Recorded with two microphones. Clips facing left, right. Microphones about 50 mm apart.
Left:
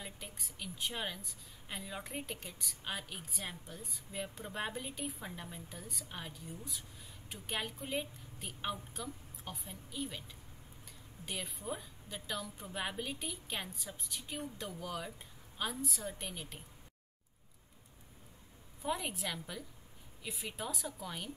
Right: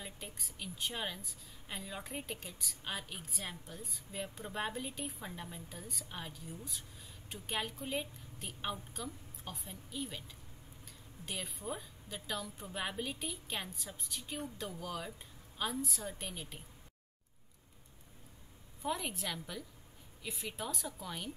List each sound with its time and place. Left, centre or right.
0.0 s a woman's voice: centre
18.8 s a woman's voice: centre